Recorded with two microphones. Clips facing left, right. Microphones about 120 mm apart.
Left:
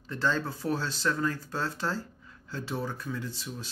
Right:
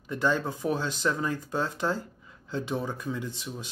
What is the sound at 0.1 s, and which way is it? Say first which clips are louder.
Speech: right 3 dB; 15° right (ahead or behind).